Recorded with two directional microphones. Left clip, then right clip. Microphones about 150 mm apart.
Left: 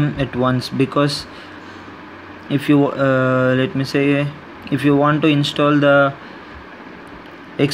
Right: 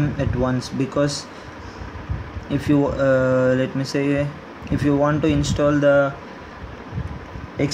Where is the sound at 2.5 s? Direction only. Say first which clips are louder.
Left 4 dB; 15° left (ahead or behind).